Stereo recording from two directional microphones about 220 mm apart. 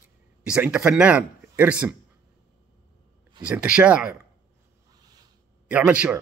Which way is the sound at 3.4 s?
5° right (ahead or behind).